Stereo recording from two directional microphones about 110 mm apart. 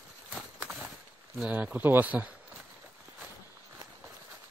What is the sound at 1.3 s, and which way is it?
Speech, 10° right (ahead or behind).